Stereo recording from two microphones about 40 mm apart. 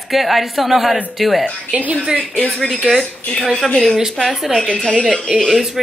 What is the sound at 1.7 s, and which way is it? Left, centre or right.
Speech, right.